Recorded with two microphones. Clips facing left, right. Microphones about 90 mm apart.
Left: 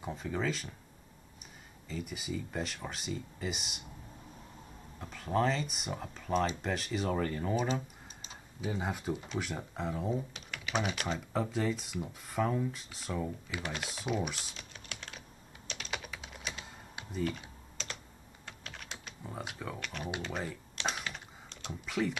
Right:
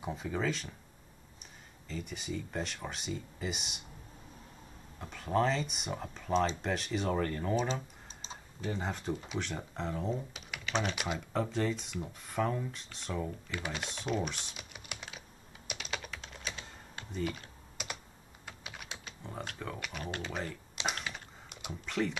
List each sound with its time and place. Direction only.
0.0 s speech: centre (ahead or behind)
1.9 s speech: 5° left (ahead or behind)
4.9 s speech: centre (ahead or behind)
14.6 s typing: 10° right (ahead or behind)
15.9 s typing: 5° left (ahead or behind)
17.8 s computer keyboard: 15° right (ahead or behind)
18.4 s typing: 10° right (ahead or behind)
20.2 s speech: centre (ahead or behind)
20.9 s a sound: centre (ahead or behind)
21.5 s typing: 10° right (ahead or behind)
21.8 s speech: 5° left (ahead or behind)